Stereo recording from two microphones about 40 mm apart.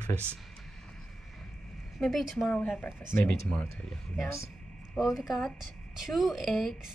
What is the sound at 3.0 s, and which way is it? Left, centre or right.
Speech, left.